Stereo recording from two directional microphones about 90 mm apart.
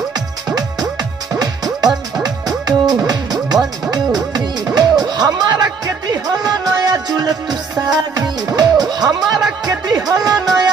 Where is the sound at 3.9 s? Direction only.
50° right (ahead or behind).